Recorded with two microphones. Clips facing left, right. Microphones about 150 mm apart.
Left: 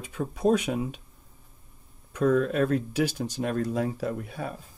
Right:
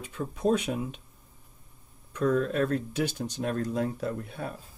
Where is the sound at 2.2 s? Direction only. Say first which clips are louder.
Left 3 dB; 55° left (ahead or behind).